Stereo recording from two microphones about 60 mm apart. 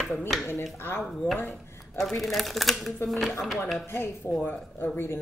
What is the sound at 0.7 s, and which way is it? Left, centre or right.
Speech, left.